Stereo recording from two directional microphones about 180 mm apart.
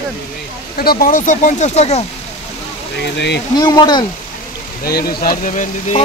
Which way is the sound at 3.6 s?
25° left (ahead or behind).